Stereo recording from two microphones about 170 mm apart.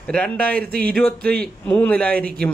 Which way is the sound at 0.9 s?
5° left (ahead or behind).